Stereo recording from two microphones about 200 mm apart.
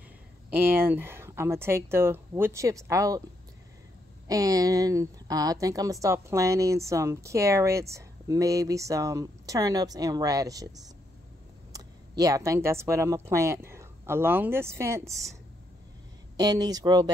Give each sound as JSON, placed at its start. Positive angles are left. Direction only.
{"t": 0.5, "sound": "a woman's voice", "side_deg": -10}
{"t": 4.3, "sound": "a woman's voice", "side_deg": -15}
{"t": 11.7, "sound": "a woman's voice", "side_deg": -15}
{"t": 15.0, "sound": "speech", "side_deg": 0}
{"t": 16.3, "sound": "speech", "side_deg": -20}